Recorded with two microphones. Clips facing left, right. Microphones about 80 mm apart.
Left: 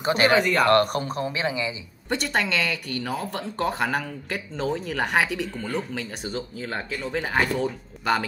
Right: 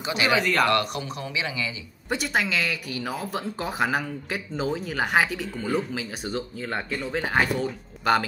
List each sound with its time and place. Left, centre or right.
0.0 s speech: left
2.0 s speech: centre